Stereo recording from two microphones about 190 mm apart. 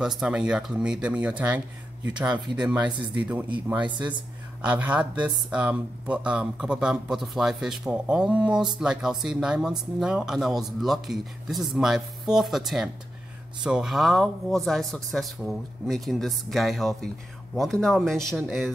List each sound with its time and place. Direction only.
0.0 s speech: centre (ahead or behind)
3.2 s speech: 10° right (ahead or behind)